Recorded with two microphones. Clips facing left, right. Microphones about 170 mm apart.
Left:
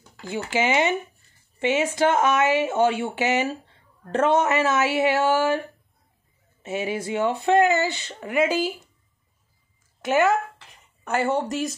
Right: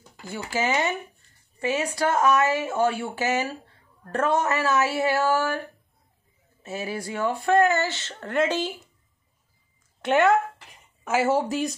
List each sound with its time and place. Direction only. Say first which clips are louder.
0.5 s speech: left 3 dB; 15° left (ahead or behind)
6.6 s speech: left 4 dB; 20° left (ahead or behind)
10.0 s speech: right 1 dB; 5° left (ahead or behind)